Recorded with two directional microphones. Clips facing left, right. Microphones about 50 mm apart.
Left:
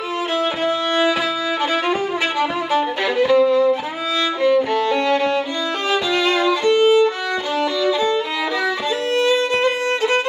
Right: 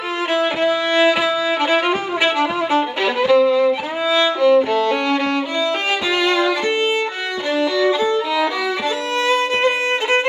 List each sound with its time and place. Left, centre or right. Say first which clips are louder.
1.6 s violin: right 2 dB; right
4.4 s music: right 2 dB; right
4.7 s violin: even; right
7.8 s violin: right 1 dB; right